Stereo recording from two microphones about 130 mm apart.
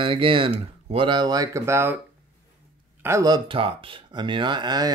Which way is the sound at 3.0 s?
25° right (ahead or behind).